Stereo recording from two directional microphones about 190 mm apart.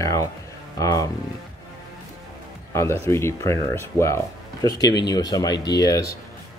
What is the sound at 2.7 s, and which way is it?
A man's voice, 15° left (ahead or behind).